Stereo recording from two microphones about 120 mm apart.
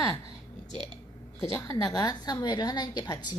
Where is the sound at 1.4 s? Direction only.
30° left (ahead or behind).